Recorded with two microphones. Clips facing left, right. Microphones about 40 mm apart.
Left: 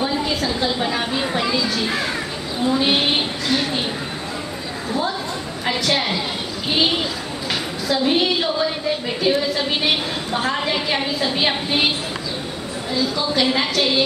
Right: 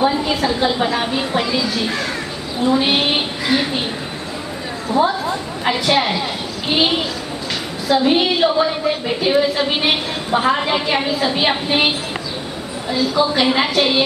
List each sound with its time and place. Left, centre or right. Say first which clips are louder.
0.0 s a woman's voice: right 4 dB; centre
1.9 s a woman's voice: right 1 dB; centre
2.6 s a woman's voice: right 2 dB; centre
5.0 s a woman's voice: right 8 dB; centre
12.9 s a woman's voice: right 4 dB; centre